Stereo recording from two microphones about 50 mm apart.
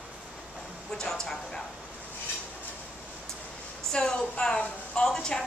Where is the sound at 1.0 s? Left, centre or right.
Centre.